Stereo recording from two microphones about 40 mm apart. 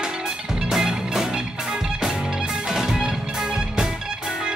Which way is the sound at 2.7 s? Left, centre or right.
Centre.